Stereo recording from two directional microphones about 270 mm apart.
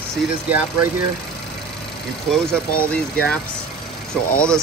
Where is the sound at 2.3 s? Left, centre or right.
Centre.